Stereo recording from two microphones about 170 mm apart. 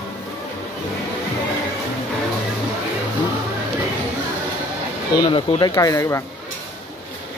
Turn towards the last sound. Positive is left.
turn(degrees=20)  # may be behind; listen again after turning